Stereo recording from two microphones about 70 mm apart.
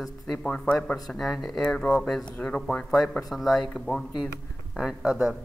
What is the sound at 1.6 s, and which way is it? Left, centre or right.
Speech, centre.